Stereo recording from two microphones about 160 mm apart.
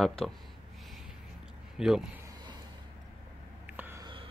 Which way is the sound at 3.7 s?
10° right (ahead or behind).